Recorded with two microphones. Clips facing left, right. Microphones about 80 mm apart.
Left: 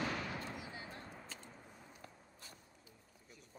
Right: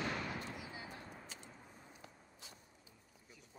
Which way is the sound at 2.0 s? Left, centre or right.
Left.